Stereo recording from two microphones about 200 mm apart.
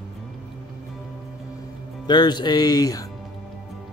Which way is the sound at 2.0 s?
20° left (ahead or behind).